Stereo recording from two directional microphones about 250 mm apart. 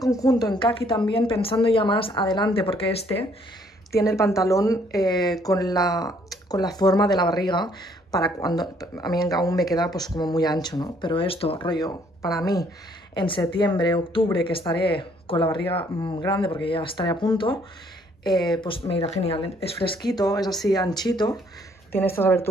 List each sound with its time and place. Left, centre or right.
0.0 s a woman's voice: centre
3.9 s a woman's voice: centre